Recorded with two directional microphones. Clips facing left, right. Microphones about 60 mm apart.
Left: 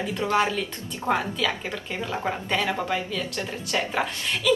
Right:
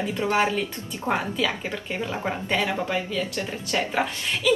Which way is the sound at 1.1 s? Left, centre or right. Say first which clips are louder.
Even; centre.